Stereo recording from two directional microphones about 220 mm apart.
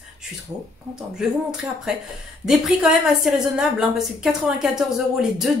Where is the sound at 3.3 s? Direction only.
5° right (ahead or behind).